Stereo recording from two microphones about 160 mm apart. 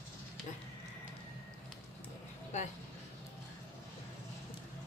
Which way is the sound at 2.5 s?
50° left (ahead or behind).